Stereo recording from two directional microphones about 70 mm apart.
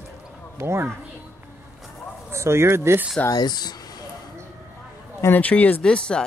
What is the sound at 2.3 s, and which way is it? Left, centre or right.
Speech, right.